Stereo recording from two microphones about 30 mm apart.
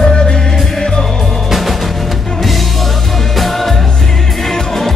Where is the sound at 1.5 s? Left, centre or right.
Centre.